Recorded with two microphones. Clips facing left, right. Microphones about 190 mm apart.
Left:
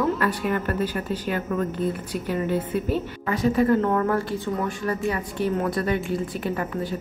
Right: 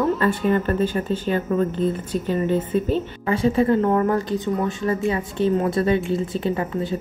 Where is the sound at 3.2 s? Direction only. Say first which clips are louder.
Right 2 dB; 25° right (ahead or behind).